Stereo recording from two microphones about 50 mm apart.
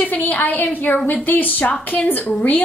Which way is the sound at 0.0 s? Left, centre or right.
Left.